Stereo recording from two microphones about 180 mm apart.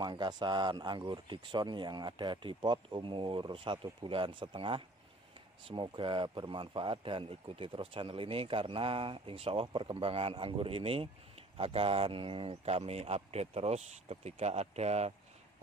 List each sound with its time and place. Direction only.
0.0 s speech: 25° right (ahead or behind)